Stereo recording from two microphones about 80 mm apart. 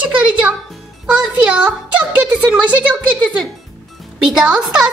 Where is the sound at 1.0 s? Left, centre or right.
Centre.